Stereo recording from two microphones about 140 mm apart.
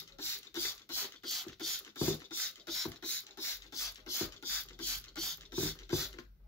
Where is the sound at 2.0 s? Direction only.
15° left (ahead or behind).